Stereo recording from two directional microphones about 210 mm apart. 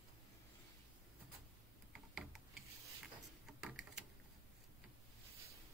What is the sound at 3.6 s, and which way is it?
Typing, 5° right (ahead or behind).